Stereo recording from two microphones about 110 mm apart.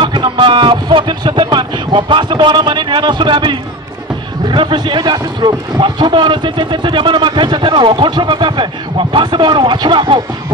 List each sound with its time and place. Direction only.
0.0 s speech: 45° right (ahead or behind)